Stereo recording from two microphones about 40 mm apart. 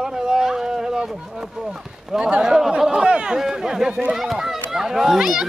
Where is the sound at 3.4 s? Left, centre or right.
Centre.